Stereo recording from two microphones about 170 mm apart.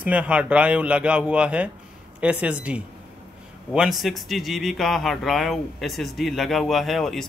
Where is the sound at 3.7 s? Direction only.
Centre (ahead or behind).